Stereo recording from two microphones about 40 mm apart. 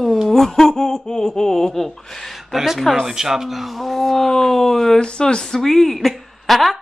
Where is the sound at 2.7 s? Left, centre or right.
Centre.